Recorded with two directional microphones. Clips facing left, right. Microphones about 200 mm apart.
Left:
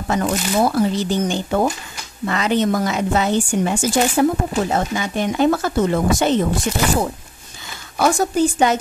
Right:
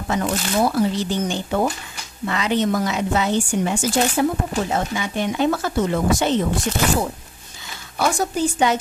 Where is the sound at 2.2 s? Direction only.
45° left (ahead or behind).